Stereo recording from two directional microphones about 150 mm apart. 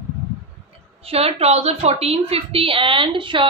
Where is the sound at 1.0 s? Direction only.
40° right (ahead or behind).